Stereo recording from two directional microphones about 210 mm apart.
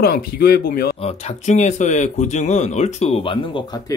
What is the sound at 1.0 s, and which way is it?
Speech, 30° left (ahead or behind).